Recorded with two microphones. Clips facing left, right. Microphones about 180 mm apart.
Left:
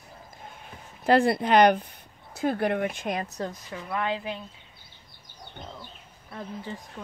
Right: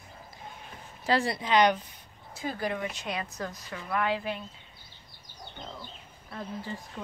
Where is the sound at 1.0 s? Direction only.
55° left (ahead or behind).